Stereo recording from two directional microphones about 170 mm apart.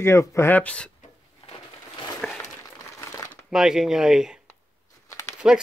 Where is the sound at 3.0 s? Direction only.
20° left (ahead or behind).